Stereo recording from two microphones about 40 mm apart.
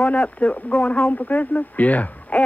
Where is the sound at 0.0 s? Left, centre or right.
Left.